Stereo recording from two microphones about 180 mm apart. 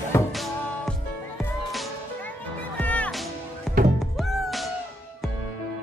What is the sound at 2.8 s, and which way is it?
Music, 10° left (ahead or behind).